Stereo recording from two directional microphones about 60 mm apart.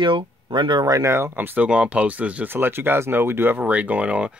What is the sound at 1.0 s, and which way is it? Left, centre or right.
Speech, right.